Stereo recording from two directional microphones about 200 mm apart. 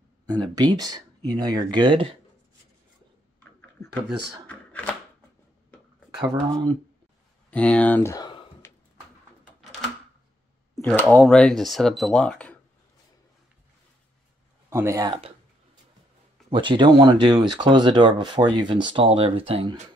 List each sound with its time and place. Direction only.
0.3 s speech: 20° right (ahead or behind)
4.5 s shuffling cards: 5° left (ahead or behind)
6.1 s speech: 20° right (ahead or behind)
7.5 s a sound: 5° left (ahead or behind)
10.7 s speech: 5° left (ahead or behind)
14.7 s speech: 15° right (ahead or behind)
15.1 s a sound: 30° right (ahead or behind)
16.4 s speech: 25° right (ahead or behind)